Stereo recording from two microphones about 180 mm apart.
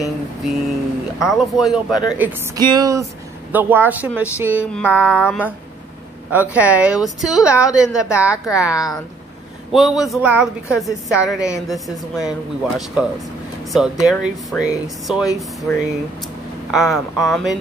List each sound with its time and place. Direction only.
0.0 s speech: centre (ahead or behind)
2.6 s speech: 20° right (ahead or behind)
4.7 s mantra: 5° left (ahead or behind)
6.3 s speech: 10° right (ahead or behind)